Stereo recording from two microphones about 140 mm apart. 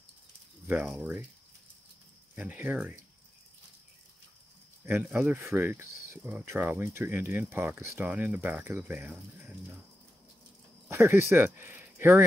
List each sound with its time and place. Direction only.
0.7 s speech: 15° right (ahead or behind)
2.3 s speech: 10° right (ahead or behind)
4.8 s speech: 10° right (ahead or behind)
10.9 s speech: 15° right (ahead or behind)